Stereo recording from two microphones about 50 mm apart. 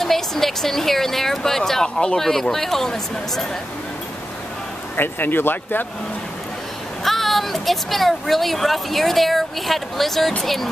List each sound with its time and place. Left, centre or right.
0.0 s speech: centre
4.9 s speech: left
7.1 s speech: centre